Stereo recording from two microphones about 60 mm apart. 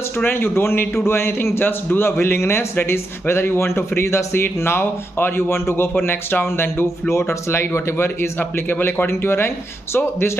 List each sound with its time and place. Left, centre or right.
0.2 s a man's voice: left